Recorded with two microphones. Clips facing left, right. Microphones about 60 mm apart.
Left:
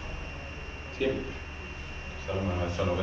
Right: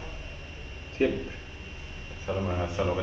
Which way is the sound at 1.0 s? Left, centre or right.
Right.